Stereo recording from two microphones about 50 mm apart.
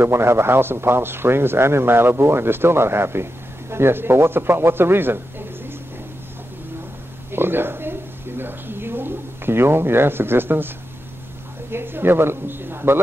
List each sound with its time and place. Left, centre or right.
0.0 s speech: right
7.2 s a sound: right
11.7 s speech: right